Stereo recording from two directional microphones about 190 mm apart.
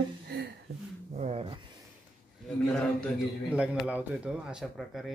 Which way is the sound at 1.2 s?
35° right (ahead or behind).